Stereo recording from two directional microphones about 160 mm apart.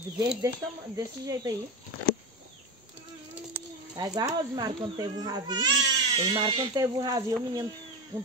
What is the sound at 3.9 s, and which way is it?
Speech, 25° right (ahead or behind).